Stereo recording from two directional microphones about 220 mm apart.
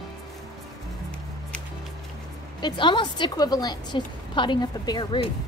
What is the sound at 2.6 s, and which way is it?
A woman's voice, 20° left (ahead or behind).